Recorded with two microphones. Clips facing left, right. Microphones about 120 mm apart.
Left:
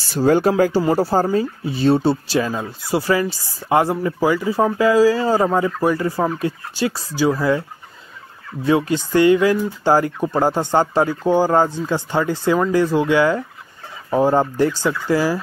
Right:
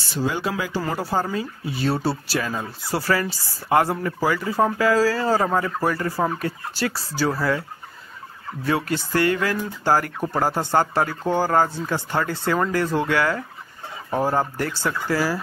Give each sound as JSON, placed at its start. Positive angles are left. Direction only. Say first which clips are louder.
{"t": 0.0, "sound": "speech", "louder": "left 9 dB", "side_deg": 45}
{"t": 0.9, "sound": "speech", "louder": "left 7 dB", "side_deg": 35}
{"t": 8.6, "sound": "speech", "louder": "left 6 dB", "side_deg": 20}